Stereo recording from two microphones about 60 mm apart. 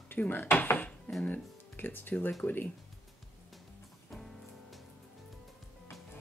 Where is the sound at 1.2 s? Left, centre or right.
Left.